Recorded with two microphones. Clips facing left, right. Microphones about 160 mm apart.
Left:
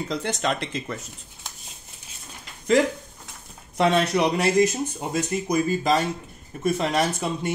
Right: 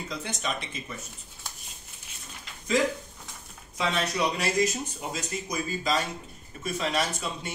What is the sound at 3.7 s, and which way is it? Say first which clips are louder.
Speech: left 8 dB; 65° left (ahead or behind).